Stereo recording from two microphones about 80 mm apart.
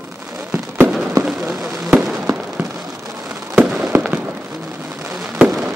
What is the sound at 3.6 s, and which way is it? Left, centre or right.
Fireworks, centre.